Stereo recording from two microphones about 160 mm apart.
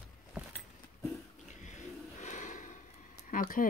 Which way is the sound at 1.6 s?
50° left (ahead or behind).